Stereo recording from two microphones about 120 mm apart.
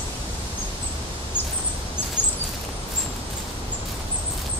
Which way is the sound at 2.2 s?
15° left (ahead or behind).